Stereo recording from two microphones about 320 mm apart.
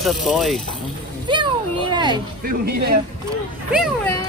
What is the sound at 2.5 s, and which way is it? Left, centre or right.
Speech, right.